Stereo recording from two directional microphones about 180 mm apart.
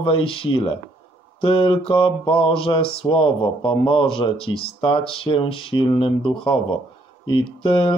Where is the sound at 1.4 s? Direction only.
30° left (ahead or behind).